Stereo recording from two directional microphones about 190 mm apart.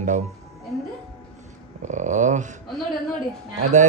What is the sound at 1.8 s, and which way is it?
Speech, 40° right (ahead or behind).